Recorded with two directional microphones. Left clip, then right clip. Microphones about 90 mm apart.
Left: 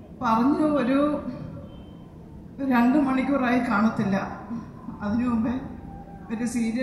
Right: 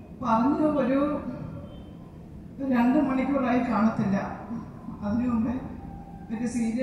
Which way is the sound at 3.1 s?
35° left (ahead or behind).